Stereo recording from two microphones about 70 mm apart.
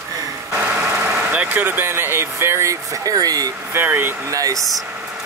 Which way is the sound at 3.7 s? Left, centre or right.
Right.